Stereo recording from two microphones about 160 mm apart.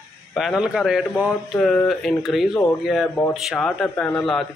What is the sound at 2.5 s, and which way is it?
Speech, 25° left (ahead or behind).